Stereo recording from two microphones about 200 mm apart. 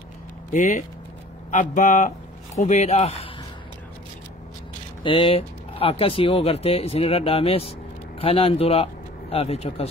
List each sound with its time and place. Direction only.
0.5 s speech: 35° left (ahead or behind)
5.0 s speech: 25° left (ahead or behind)